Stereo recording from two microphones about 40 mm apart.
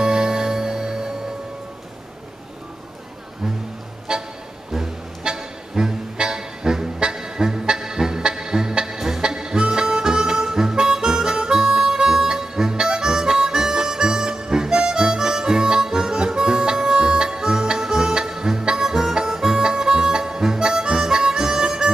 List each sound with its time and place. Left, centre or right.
0.0 s music: centre
4.1 s music: centre